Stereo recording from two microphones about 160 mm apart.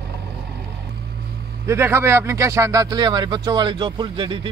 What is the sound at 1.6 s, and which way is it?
Speech, 15° right (ahead or behind).